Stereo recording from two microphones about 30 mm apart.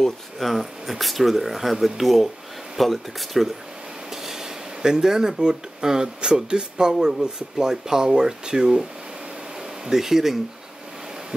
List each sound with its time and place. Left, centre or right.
0.4 s speech: centre
4.1 s speech: centre
6.9 s speech: centre
9.8 s speech: centre